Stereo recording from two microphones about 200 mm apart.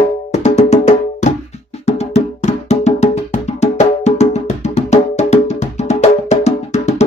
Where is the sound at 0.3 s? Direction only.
35° left (ahead or behind).